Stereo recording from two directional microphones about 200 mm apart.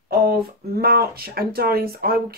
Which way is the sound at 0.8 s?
50° right (ahead or behind).